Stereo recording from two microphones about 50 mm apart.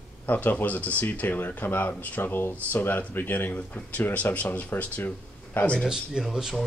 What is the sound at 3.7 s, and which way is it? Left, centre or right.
Speech, left.